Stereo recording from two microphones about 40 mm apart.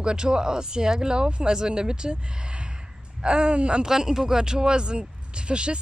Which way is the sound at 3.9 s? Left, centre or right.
Centre.